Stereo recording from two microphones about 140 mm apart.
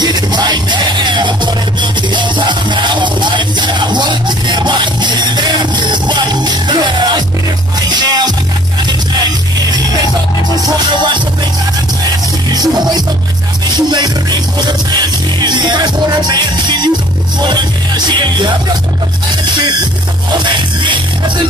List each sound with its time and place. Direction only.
0.0 s music: 30° right (ahead or behind)
10.5 s music: 35° right (ahead or behind)
12.5 s music: 30° right (ahead or behind)